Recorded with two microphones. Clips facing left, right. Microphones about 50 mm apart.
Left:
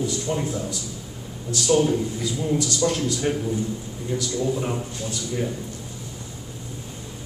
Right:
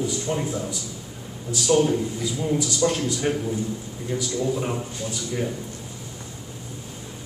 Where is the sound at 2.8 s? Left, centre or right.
Centre.